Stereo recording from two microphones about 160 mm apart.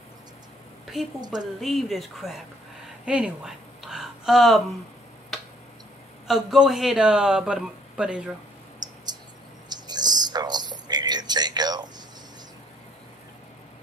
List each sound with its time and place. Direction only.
1.2 s speech: 25° right (ahead or behind)
1.6 s speech: centre (ahead or behind)
5.3 s tick-tock: centre (ahead or behind)
6.2 s speech: centre (ahead or behind)
8.8 s mouse: 25° right (ahead or behind)
9.7 s a sound: 25° right (ahead or behind)